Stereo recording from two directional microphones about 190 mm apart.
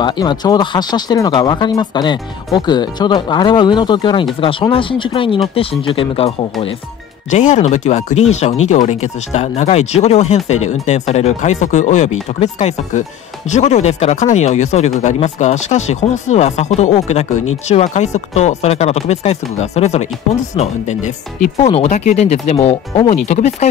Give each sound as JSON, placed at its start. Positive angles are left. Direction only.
{"t": 0.0, "sound": "speech", "side_deg": 25}